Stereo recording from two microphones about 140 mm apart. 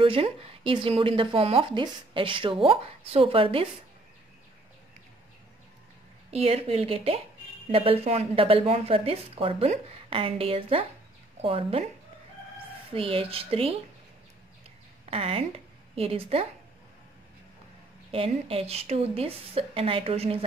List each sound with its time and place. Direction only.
0.0 s speech: 40° right (ahead or behind)
6.3 s a woman's voice: 45° right (ahead or behind)
12.9 s a woman's voice: 40° right (ahead or behind)
15.0 s a woman's voice: 45° right (ahead or behind)
18.1 s a woman's voice: 45° right (ahead or behind)